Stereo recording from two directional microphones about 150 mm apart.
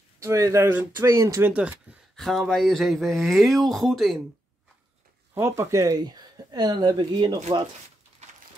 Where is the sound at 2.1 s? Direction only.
Centre (ahead or behind).